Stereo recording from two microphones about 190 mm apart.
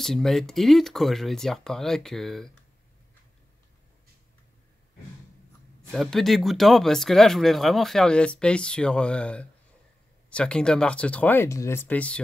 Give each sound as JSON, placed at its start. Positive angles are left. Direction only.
{"t": 0.0, "sound": "speech", "side_deg": 0}
{"t": 5.9, "sound": "speech", "side_deg": 0}